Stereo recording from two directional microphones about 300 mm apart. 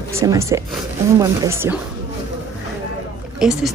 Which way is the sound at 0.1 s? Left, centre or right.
Centre.